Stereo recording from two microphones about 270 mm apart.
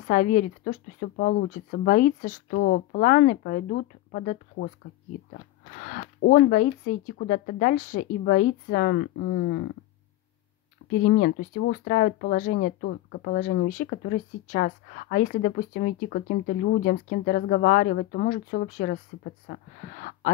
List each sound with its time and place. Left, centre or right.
0.1 s speech: left
5.8 s speech: left
10.9 s speech: left